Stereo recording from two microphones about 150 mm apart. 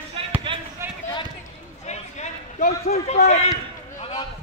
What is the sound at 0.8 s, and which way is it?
Basketball bounce, 15° right (ahead or behind).